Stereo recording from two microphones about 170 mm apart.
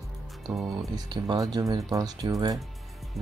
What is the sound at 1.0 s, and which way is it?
Speech, 25° right (ahead or behind).